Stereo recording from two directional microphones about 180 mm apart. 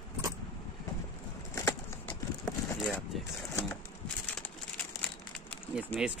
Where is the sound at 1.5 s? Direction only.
15° left (ahead or behind).